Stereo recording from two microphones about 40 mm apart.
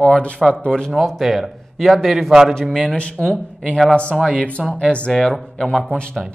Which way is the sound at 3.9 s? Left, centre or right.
Left.